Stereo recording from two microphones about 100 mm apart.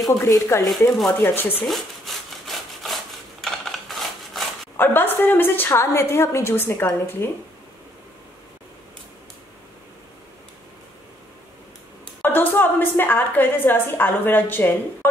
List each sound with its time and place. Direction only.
0.2 s a woman's voice: 30° left (ahead or behind)
0.7 s speech: centre (ahead or behind)
1.2 s a woman's voice: 20° left (ahead or behind)
1.7 s sawing: centre (ahead or behind)
4.7 s a woman's voice: 20° left (ahead or behind)
12.2 s a woman's voice: 20° left (ahead or behind)